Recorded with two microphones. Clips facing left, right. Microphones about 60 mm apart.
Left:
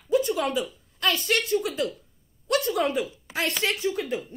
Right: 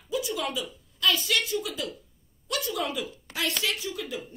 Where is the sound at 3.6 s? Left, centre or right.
Left.